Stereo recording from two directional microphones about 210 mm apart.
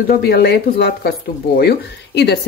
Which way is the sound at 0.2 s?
50° left (ahead or behind).